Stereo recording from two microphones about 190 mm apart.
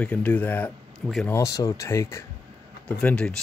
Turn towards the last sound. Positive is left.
turn(degrees=5)  # may be behind; listen again after turning